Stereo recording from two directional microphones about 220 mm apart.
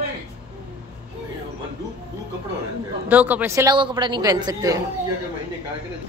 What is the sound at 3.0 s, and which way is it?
A woman's voice, 5° right (ahead or behind).